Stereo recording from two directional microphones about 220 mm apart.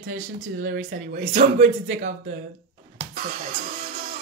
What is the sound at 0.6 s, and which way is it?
Speech, 50° right (ahead or behind).